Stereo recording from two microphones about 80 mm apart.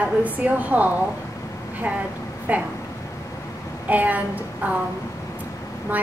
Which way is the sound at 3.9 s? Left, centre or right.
Centre.